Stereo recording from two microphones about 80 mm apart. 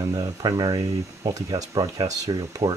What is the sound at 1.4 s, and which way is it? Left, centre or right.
Speech, right.